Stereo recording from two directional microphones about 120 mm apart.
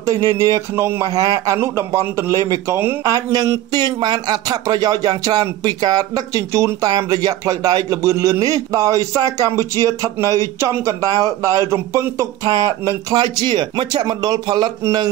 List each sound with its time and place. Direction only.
0.0 s a man's voice: 30° right (ahead or behind)
1.0 s a man's voice: 30° right (ahead or behind)